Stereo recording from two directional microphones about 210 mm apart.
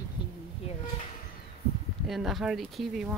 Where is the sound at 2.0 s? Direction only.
Centre (ahead or behind).